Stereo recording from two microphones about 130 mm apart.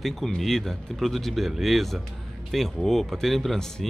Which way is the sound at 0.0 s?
Centre (ahead or behind).